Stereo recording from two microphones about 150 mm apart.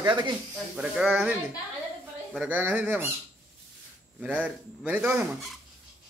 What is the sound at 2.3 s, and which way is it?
Speech, 10° right (ahead or behind).